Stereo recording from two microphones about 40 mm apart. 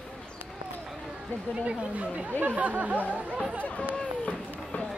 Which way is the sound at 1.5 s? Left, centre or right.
Right.